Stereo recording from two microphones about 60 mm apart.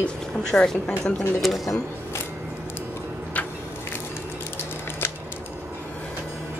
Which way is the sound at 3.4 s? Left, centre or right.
Left.